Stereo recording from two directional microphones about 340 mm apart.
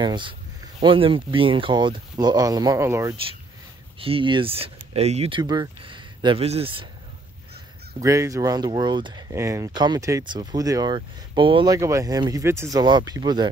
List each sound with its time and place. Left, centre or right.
0.0 s speech: centre
8.0 s speech: centre